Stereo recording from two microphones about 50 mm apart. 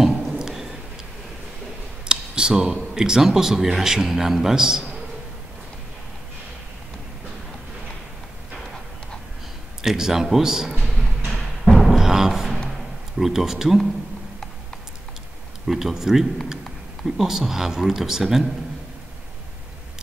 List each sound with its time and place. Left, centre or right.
0.0 s a sound: centre
2.0 s a sound: centre
2.9 s speech: centre
9.8 s speech: centre
11.2 s timpani: centre
13.2 s speech: centre
15.6 s speech: centre